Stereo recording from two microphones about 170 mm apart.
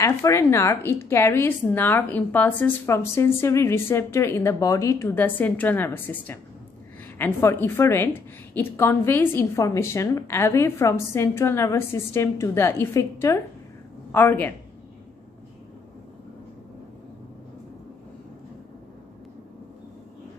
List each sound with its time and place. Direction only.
0.0 s speech: 15° left (ahead or behind)